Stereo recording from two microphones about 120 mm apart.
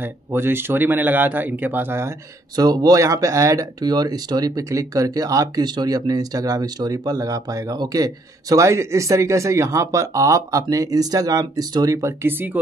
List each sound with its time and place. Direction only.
0.0 s speech: 20° right (ahead or behind)
2.5 s speech: 35° right (ahead or behind)